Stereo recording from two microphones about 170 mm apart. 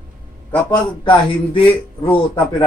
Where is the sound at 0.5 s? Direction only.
10° left (ahead or behind).